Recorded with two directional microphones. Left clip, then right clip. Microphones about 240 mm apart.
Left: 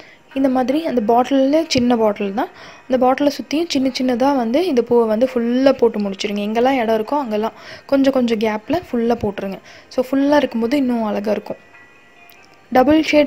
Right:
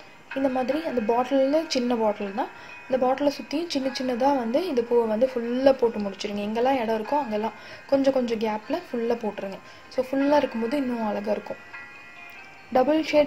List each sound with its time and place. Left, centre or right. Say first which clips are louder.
0.4 s a woman's voice: left 8 dB; left
12.7 s a woman's voice: left 8 dB; left